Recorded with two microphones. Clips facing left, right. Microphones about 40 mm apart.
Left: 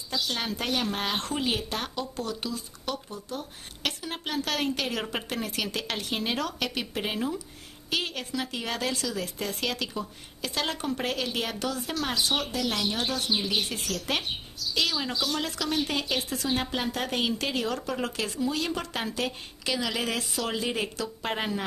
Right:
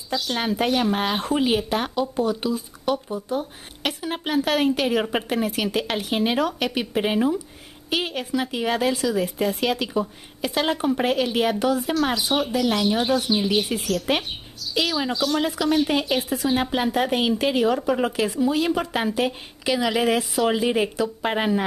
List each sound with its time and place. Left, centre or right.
0.1 s speech: centre